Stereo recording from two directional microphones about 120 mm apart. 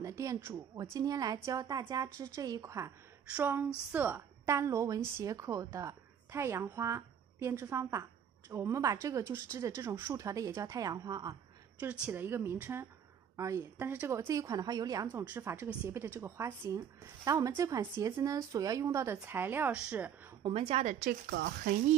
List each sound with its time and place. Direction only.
0.0 s a woman's voice: 25° right (ahead or behind)
3.3 s a woman's voice: 15° right (ahead or behind)
4.5 s a woman's voice: 25° right (ahead or behind)
11.8 s a woman's voice: 15° right (ahead or behind); by 15.0 s 30° right (ahead or behind)
15.2 s a woman's voice: 15° right (ahead or behind)
20.4 s a woman's voice: 50° right (ahead or behind)